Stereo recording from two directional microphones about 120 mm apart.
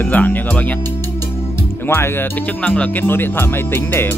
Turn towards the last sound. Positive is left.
turn(degrees=20)  # may be behind; listen again after turning